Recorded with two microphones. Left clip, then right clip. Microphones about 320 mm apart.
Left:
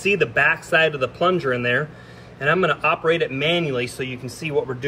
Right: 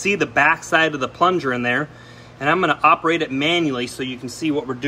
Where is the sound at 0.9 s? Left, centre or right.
Centre.